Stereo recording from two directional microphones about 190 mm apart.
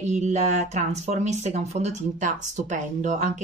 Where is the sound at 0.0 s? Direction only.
40° right (ahead or behind).